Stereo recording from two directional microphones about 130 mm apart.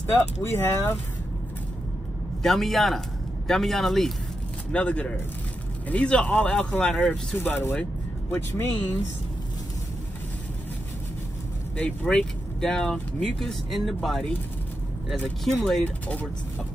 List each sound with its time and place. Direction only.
0.1 s speech: 20° left (ahead or behind)
2.4 s speech: centre (ahead or behind); by 7.7 s 15° left (ahead or behind)
11.8 s speech: 10° left (ahead or behind)